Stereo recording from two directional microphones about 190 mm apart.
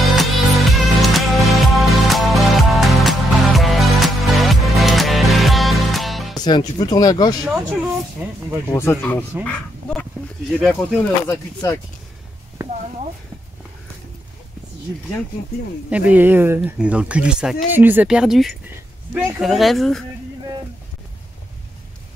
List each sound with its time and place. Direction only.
0.0 s music: centre (ahead or behind)
6.3 s speech: 20° left (ahead or behind)
7.4 s speech: 5° right (ahead or behind)
8.6 s speech: 10° left (ahead or behind)
11.2 s speech: 15° left (ahead or behind)
15.9 s speech: 10° right (ahead or behind)